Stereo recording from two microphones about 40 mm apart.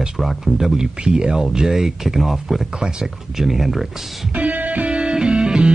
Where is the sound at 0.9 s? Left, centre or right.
Right.